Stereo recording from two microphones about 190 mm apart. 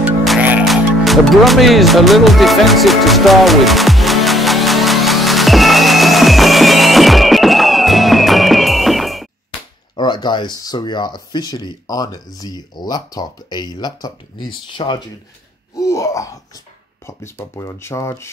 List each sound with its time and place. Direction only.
0.0 s music: 5° right (ahead or behind)
9.9 s speech: 25° left (ahead or behind)